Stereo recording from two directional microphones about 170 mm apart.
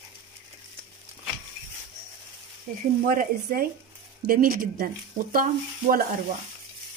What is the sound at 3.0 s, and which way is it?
Speech, 55° right (ahead or behind).